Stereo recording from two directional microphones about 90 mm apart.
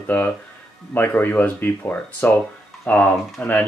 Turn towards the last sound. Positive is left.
turn(degrees=20)  # may be behind; listen again after turning